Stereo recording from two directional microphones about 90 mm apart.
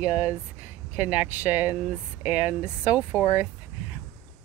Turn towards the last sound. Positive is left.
turn(degrees=-20)  # may be behind; listen again after turning